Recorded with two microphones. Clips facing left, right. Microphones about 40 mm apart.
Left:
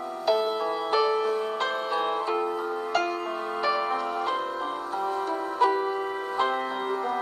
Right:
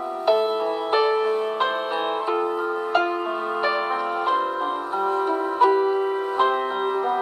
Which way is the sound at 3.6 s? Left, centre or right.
Right.